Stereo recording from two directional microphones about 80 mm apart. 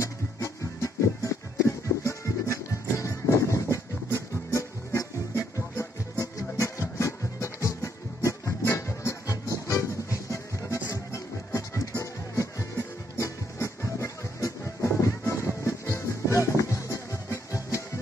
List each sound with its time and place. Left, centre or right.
0.0 s music: left